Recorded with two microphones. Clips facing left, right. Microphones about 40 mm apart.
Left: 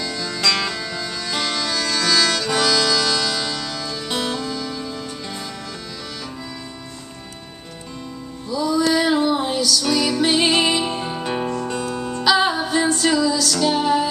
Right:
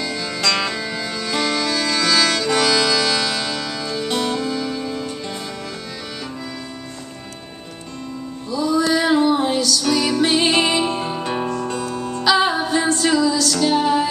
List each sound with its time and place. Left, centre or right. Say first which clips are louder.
0.0 s music: even; centre
8.5 s music: right 1 dB; centre
11.7 s music: even; centre